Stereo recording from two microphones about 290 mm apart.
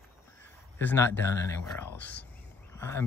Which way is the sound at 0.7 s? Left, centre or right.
Centre.